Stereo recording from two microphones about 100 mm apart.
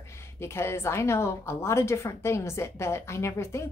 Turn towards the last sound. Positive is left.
turn(degrees=25)  # may be behind; listen again after turning